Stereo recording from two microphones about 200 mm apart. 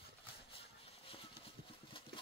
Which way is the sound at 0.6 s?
30° left (ahead or behind).